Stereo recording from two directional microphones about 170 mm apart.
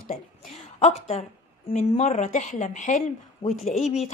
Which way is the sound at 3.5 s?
Centre (ahead or behind).